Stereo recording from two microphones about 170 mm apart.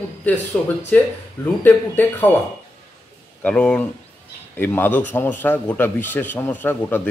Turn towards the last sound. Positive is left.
turn(degrees=10)  # may be behind; listen again after turning